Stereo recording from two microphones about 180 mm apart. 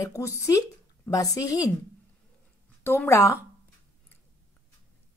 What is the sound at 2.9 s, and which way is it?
Speech, 15° left (ahead or behind).